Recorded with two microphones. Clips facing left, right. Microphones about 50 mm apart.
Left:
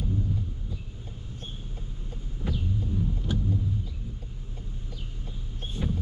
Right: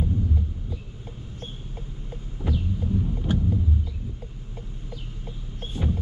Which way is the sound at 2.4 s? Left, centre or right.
Centre.